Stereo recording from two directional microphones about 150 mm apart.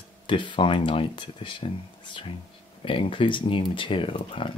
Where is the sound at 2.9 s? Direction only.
35° left (ahead or behind).